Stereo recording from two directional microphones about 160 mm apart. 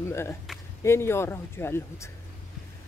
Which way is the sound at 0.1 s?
15° left (ahead or behind).